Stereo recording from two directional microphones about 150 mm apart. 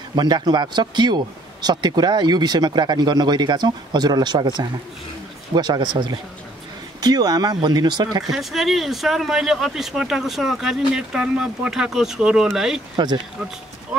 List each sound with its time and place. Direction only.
0.1 s a man's voice: 30° right (ahead or behind)
7.0 s a man's voice: 25° right (ahead or behind)
8.2 s speech: centre (ahead or behind)
12.9 s a man's voice: 30° right (ahead or behind)